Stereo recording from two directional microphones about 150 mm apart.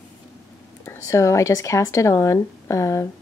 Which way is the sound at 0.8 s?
20° left (ahead or behind).